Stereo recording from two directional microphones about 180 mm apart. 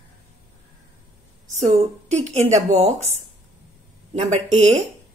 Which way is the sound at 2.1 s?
40° right (ahead or behind).